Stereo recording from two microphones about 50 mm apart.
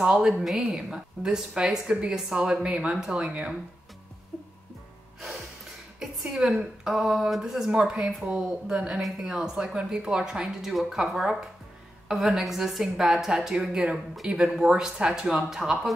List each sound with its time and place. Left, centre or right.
0.2 s a woman's voice: centre; by 3.5 s right
5.9 s a woman's voice: centre
9.8 s a woman's voice: centre